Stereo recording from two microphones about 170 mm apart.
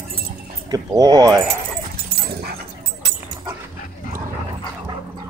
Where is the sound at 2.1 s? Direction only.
70° right (ahead or behind).